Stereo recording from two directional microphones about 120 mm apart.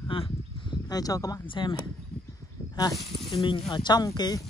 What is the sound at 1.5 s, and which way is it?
Speech, 40° left (ahead or behind).